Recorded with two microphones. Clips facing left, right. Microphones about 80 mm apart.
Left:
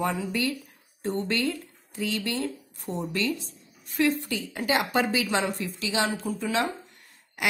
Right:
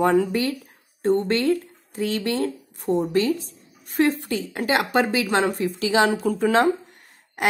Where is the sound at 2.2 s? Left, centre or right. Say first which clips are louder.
Right 6 dB; right.